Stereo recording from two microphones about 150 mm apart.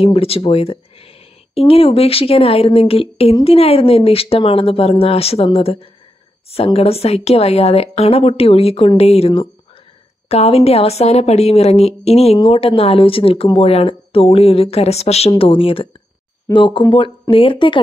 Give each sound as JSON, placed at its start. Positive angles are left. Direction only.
{"t": 0.0, "sound": "a woman's voice", "side_deg": 40}